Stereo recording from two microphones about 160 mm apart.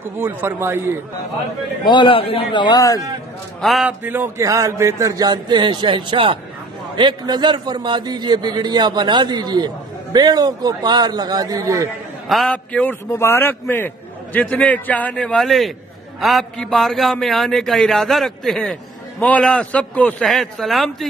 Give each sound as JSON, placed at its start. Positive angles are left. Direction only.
{"t": 0.0, "sound": "a man's voice", "side_deg": -15}
{"t": 1.9, "sound": "a man's voice", "side_deg": 30}
{"t": 3.6, "sound": "a man's voice", "side_deg": 0}
{"t": 4.0, "sound": "a man's voice", "side_deg": -10}
{"t": 12.3, "sound": "a man's voice", "side_deg": 0}
{"t": 13.1, "sound": "a man's voice", "side_deg": 15}